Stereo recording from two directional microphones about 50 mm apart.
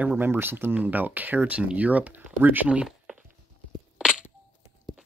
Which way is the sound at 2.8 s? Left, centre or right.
Centre.